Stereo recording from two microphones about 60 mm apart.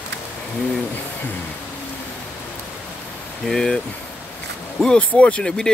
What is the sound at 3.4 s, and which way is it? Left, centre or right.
Speech, centre.